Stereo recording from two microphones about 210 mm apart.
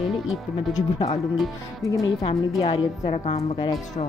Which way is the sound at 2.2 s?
25° left (ahead or behind).